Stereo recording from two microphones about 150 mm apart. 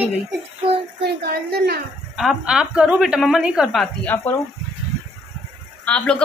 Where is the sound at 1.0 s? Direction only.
90° right.